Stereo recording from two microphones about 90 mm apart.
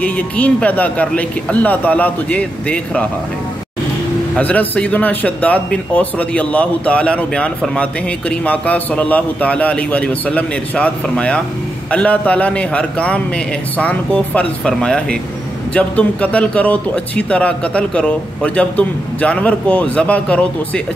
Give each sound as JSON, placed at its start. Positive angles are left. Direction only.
{"t": 0.0, "sound": "a man's voice", "side_deg": 15}
{"t": 4.4, "sound": "a man's voice", "side_deg": 15}